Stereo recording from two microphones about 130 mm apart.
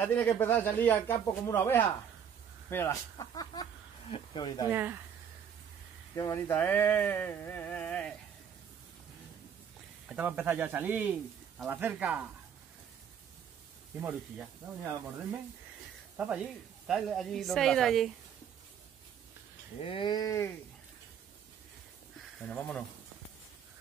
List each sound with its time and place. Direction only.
0.0 s speech: 10° left (ahead or behind); by 4.6 s 35° left (ahead or behind)
4.7 s speech: 15° right (ahead or behind)
6.1 s speech: 25° left (ahead or behind)
10.0 s speech: 10° right (ahead or behind)
16.2 s a woman's voice: 10° right (ahead or behind)
19.8 s livestock: 40° left (ahead or behind)
22.2 s speech: 5° left (ahead or behind)